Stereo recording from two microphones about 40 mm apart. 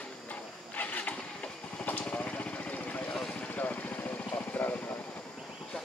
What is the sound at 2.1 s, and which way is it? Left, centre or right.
Vehicle, left.